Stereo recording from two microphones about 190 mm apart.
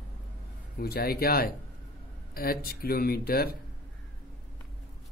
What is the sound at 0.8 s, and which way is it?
Speech, 55° left (ahead or behind).